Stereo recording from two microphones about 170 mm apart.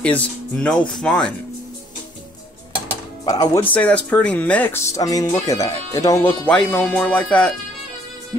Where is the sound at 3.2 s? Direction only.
25° left (ahead or behind).